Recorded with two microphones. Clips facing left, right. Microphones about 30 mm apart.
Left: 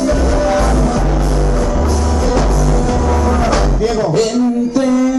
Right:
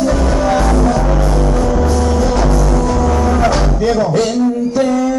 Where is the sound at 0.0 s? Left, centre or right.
Right.